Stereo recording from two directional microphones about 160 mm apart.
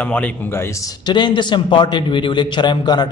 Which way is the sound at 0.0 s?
10° left (ahead or behind).